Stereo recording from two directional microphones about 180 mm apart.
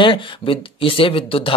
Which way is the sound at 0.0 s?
30° left (ahead or behind).